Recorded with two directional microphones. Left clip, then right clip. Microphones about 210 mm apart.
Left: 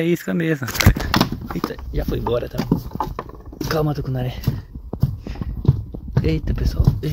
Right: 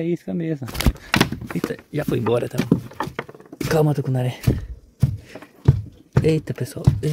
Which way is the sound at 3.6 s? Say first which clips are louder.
Right 2 dB; 30° right (ahead or behind).